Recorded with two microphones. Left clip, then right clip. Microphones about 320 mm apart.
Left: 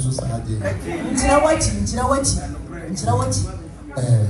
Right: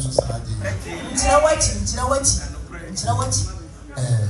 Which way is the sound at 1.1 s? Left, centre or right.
Right.